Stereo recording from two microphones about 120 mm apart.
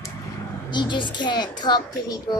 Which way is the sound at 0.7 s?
40° left (ahead or behind).